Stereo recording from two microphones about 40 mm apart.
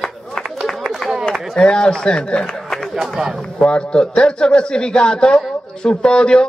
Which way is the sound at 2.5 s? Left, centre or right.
Centre.